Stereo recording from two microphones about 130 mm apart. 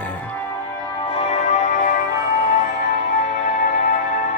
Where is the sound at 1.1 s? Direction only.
55° left (ahead or behind); by 2.0 s 90° left.